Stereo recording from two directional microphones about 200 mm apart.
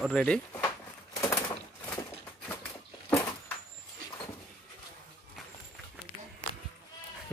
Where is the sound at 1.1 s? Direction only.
15° left (ahead or behind).